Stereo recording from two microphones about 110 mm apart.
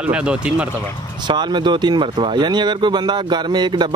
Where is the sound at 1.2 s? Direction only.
45° right (ahead or behind).